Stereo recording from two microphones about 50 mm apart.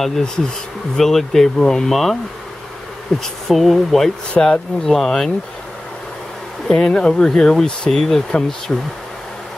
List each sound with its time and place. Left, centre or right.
0.0 s speech: centre
6.7 s speech: centre